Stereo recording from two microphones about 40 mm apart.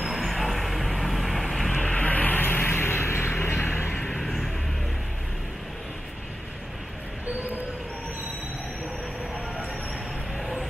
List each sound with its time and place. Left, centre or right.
0.3 s vehicle: centre
1.8 s vehicle: centre
2.0 s vehicle: left
4.1 s music: centre
10.4 s a sound: centre